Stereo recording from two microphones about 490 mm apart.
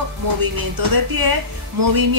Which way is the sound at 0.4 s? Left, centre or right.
Right.